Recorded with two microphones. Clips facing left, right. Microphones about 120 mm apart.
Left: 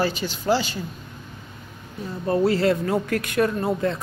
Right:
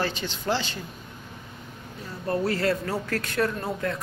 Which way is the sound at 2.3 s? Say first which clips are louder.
Left 5 dB; 25° left (ahead or behind).